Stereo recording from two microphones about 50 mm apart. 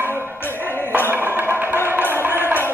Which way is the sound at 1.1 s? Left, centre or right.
Right.